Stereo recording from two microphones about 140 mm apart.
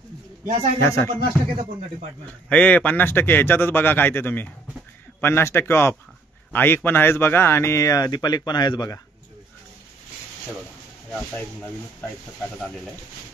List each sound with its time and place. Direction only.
0.7 s a man's voice: 20° left (ahead or behind)
1.2 s speech: 65° right (ahead or behind)
2.5 s a man's voice: 10° left (ahead or behind); by 9.0 s 30° left (ahead or behind)
11.1 s a man's voice: 5° left (ahead or behind)